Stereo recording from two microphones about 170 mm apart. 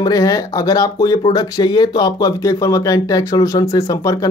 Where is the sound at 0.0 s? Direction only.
20° left (ahead or behind).